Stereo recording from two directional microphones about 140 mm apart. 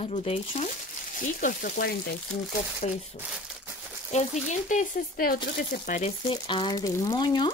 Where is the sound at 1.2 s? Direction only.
75° left (ahead or behind).